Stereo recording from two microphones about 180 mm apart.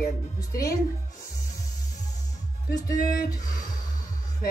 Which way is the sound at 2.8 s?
50° left (ahead or behind).